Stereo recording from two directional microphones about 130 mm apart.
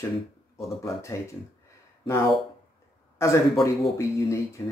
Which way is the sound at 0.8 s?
25° left (ahead or behind).